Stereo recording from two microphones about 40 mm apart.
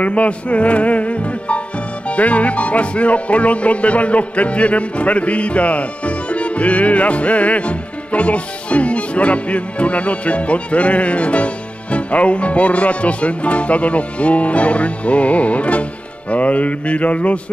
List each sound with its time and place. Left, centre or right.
0.0 s music: left